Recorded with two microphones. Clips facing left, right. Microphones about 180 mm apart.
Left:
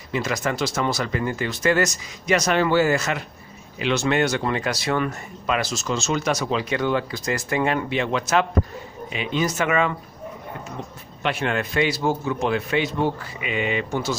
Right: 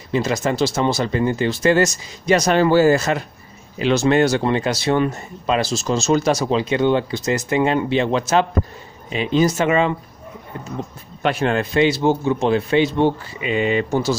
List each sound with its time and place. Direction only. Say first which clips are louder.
0.1 s a man's voice: right 5 dB; 25° right (ahead or behind)
11.2 s a man's voice: right 5 dB; 35° right (ahead or behind)